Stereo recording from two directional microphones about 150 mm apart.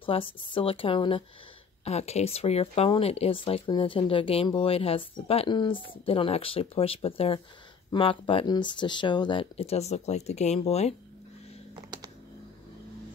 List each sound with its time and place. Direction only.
0.0 s speech: 35° left (ahead or behind)
1.9 s speech: 45° left (ahead or behind)
11.7 s typing: 30° right (ahead or behind)